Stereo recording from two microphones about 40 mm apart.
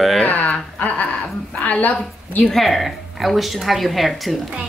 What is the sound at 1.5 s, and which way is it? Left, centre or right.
Speech, left.